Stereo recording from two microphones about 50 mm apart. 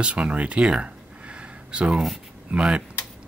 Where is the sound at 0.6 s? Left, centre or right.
Centre.